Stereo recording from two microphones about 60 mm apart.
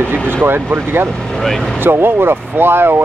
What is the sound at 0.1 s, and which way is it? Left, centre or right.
Speech, right.